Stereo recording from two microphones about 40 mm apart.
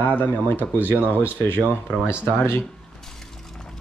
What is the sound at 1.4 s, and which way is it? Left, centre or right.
Speech, left.